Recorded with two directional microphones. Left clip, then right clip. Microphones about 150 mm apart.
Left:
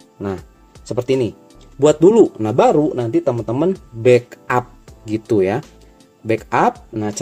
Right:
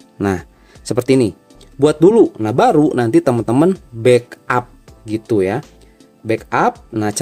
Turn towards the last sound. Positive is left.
turn(degrees=-35)  # may be behind; listen again after turning